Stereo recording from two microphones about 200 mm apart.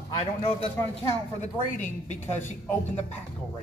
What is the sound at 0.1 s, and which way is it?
A man's voice, 30° left (ahead or behind).